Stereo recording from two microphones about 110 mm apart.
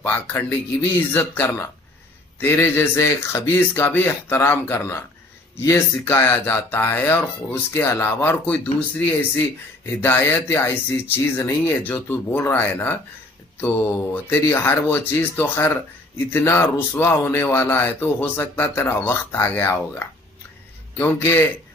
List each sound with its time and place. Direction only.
0.0 s speech: 20° left (ahead or behind)
21.0 s speech: 20° left (ahead or behind)